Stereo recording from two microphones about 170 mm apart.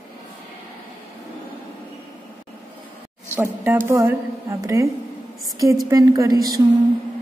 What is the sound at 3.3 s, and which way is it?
Speech, 10° right (ahead or behind).